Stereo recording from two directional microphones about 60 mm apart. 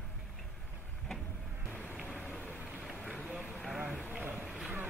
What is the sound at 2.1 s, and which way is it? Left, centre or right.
Rain, left.